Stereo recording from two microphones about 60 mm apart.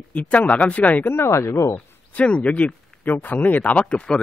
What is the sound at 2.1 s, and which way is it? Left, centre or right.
Speech, left.